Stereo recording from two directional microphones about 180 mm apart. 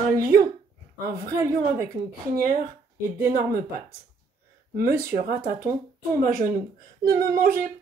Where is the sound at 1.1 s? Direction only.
55° right (ahead or behind).